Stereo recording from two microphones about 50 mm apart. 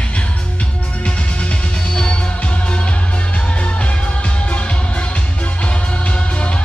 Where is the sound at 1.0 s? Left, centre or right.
Left.